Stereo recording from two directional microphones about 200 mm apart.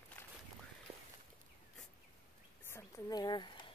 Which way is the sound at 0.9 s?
30° right (ahead or behind).